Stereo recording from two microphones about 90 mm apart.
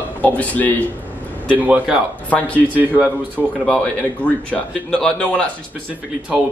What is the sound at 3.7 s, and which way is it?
Speech, 15° left (ahead or behind).